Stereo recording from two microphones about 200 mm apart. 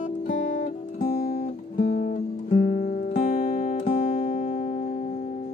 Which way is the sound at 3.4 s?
40° left (ahead or behind).